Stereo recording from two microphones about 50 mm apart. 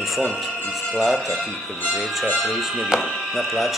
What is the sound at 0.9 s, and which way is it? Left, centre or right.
Speech, centre.